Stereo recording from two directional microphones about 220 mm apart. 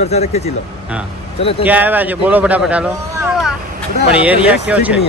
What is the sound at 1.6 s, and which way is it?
Speech, 10° right (ahead or behind).